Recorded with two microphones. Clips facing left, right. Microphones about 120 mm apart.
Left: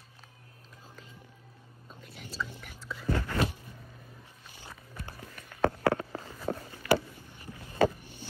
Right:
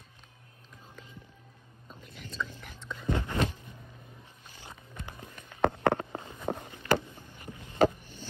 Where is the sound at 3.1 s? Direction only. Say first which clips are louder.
Even; 20° right (ahead or behind).